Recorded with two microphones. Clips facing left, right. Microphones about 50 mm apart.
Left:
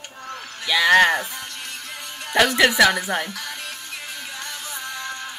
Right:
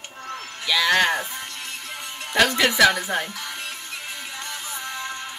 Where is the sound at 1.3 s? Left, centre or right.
Right.